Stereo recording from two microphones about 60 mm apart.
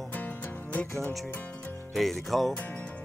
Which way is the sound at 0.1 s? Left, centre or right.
Left.